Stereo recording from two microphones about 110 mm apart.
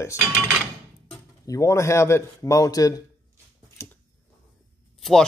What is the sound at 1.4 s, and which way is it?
Speech, 30° left (ahead or behind).